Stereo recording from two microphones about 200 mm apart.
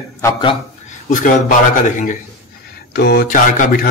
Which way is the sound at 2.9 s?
50° left (ahead or behind).